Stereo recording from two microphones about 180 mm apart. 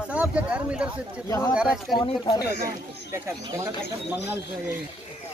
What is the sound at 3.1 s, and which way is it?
Speech, 15° right (ahead or behind).